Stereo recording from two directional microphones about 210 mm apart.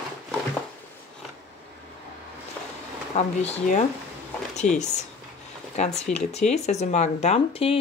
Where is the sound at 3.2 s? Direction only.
35° left (ahead or behind).